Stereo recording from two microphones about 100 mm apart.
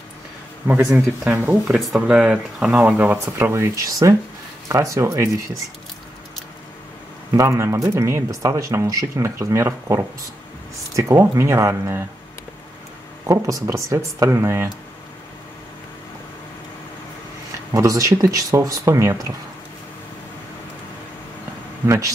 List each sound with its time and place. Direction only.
0.9 s speech: 20° right (ahead or behind)
1.7 s speech: centre (ahead or behind); by 5.3 s 30° right (ahead or behind)
7.3 s speech: 30° right (ahead or behind)
13.3 s speech: 30° right (ahead or behind)
17.7 s speech: 35° right (ahead or behind)
21.8 s speech: 30° right (ahead or behind)